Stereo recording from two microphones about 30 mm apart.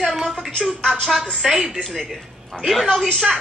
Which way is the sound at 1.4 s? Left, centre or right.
Centre.